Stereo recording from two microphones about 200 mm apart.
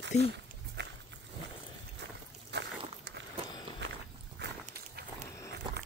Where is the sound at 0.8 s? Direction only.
60° right (ahead or behind).